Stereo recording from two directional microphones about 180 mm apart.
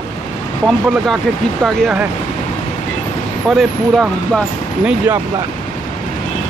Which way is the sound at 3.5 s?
Centre (ahead or behind).